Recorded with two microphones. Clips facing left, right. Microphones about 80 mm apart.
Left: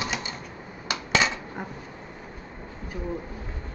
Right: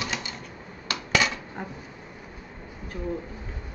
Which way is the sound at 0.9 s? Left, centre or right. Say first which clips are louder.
Left 1 dB; left.